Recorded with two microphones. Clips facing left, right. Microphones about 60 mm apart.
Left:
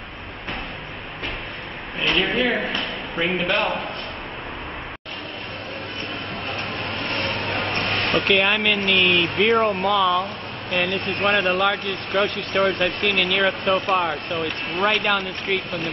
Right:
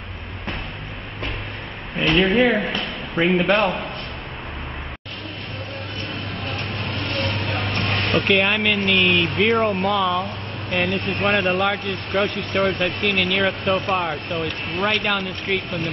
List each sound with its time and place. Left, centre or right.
2.0 s speech: centre
7.1 s vehicle: left
8.3 s speech: centre
9.8 s speech: centre